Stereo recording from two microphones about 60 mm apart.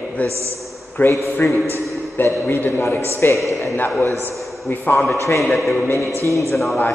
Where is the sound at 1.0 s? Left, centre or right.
Left.